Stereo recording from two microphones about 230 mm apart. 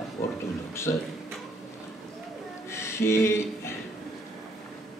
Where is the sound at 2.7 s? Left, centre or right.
Centre.